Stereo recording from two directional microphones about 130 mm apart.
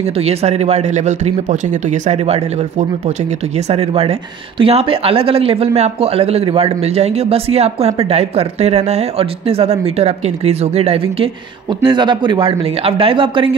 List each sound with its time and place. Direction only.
0.2 s a man's voice: 55° right (ahead or behind)
11.8 s speech: 35° right (ahead or behind)